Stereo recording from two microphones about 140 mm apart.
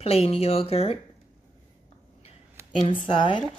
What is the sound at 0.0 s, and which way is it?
Speech, 45° left (ahead or behind).